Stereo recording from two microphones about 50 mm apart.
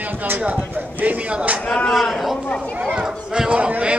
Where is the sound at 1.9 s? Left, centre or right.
Centre.